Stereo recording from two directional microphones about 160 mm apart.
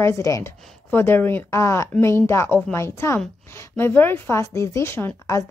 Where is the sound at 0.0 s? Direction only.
20° left (ahead or behind).